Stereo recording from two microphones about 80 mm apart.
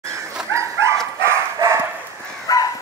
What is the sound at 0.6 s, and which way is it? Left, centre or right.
Dog, right.